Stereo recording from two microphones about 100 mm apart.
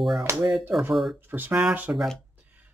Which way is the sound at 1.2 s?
20° right (ahead or behind).